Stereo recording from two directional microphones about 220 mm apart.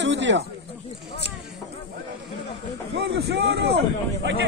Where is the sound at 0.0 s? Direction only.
55° right (ahead or behind).